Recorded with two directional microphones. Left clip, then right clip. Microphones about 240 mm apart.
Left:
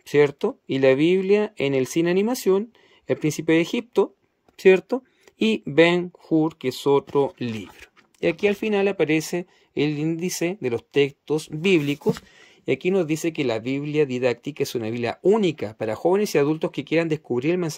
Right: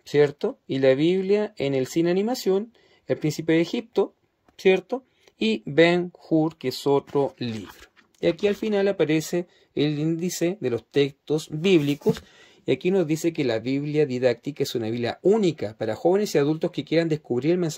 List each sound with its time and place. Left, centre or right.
0.0 s speech: centre
6.1 s speech: left
6.4 s speech: centre